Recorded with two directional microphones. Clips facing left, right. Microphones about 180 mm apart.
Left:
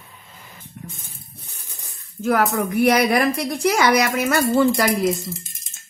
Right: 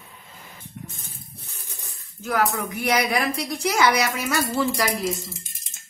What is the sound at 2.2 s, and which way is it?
A woman's voice, 55° left (ahead or behind).